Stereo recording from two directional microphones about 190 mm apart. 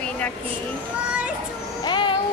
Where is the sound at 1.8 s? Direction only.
25° left (ahead or behind).